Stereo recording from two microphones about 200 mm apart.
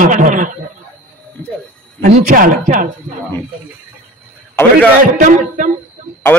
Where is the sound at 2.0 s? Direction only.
45° right (ahead or behind).